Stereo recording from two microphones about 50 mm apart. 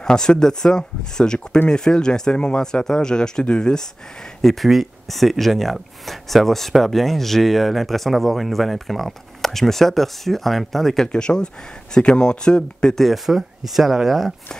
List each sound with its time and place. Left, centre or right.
0.0 s speech: centre
4.4 s speech: centre
11.1 s speech: centre
13.0 s speech: centre